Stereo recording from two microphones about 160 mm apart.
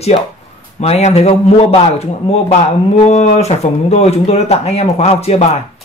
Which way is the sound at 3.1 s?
40° left (ahead or behind).